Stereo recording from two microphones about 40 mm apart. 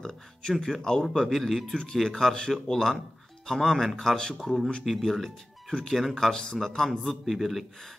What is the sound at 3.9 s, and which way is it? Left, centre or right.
Speech, centre.